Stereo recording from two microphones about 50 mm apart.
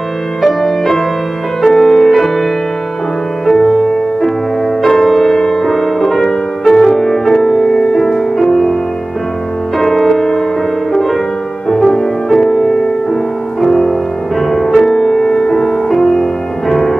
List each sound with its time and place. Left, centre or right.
0.4 s music: centre
4.8 s music: centre
9.8 s music: centre